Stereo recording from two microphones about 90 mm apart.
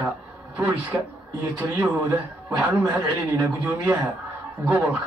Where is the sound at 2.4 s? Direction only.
15° right (ahead or behind).